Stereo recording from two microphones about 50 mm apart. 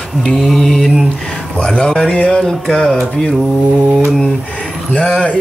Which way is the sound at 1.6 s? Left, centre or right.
Centre.